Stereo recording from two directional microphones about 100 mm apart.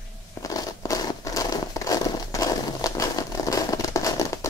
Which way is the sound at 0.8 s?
35° left (ahead or behind).